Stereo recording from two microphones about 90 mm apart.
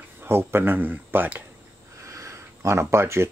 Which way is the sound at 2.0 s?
35° right (ahead or behind).